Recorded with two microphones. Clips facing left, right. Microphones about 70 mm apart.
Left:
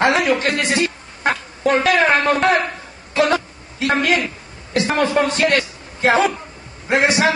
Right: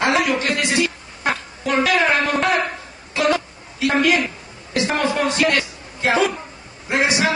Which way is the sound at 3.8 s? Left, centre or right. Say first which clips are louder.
Even; left.